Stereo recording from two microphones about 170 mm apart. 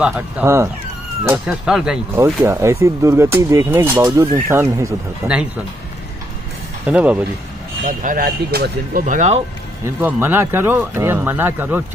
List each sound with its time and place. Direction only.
0.0 s speech: 10° right (ahead or behind)
2.1 s speech: 15° right (ahead or behind)
5.2 s speech: 5° right (ahead or behind)
6.9 s speech: 10° right (ahead or behind)
7.8 s speech: 50° right (ahead or behind); by 9.0 s 70° right (ahead or behind)
9.0 s speech: 45° right (ahead or behind)
9.8 s speech: 10° right (ahead or behind)